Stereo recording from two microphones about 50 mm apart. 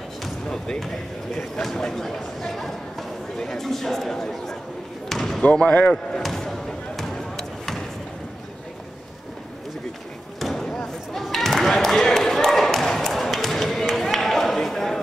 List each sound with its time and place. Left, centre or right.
0.5 s speech: centre
5.1 s basketball bounce: centre
5.4 s speech: left
6.2 s basketball bounce: centre
10.4 s basketball bounce: centre
13.9 s a sound: centre